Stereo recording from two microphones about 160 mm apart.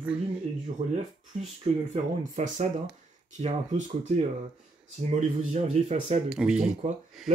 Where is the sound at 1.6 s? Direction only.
45° right (ahead or behind).